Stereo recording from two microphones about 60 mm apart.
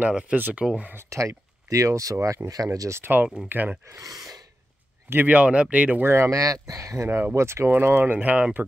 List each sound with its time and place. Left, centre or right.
0.0 s speech: right
0.4 s speech: right
1.1 s speech: right
2.9 s speech: right
4.0 s gasp: right
5.1 s speech: right
6.0 s speech: right
6.4 s speech: right
7.3 s speech: right
7.7 s speech: right
8.1 s speech: right